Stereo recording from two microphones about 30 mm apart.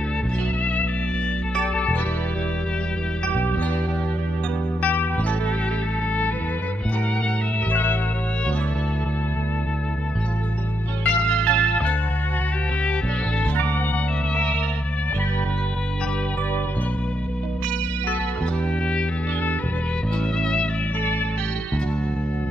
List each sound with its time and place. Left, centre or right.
11.2 s music: left